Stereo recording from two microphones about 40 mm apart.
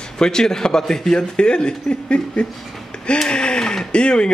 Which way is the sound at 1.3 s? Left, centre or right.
Left.